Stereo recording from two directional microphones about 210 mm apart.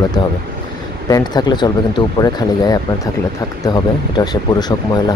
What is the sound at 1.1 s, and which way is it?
Speech, 20° left (ahead or behind).